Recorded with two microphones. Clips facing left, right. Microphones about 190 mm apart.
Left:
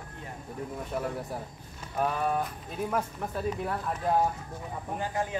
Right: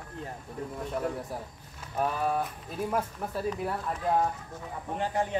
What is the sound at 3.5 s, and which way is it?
Speech, centre (ahead or behind).